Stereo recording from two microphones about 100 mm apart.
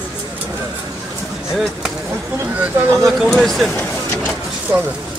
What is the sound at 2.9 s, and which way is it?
Speech, centre (ahead or behind).